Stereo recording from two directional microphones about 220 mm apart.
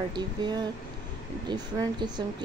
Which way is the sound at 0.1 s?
20° right (ahead or behind).